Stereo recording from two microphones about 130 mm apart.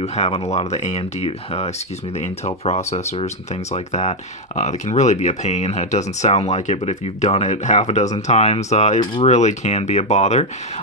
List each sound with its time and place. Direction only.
0.0 s speech: 55° left (ahead or behind)